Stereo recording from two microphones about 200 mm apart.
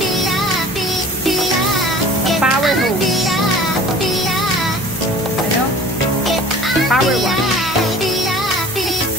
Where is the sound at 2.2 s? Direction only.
Centre (ahead or behind).